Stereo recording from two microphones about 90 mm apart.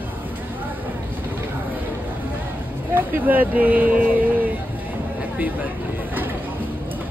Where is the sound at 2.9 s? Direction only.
20° right (ahead or behind).